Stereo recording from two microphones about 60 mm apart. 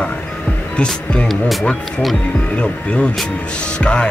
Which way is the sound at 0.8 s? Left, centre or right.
Centre.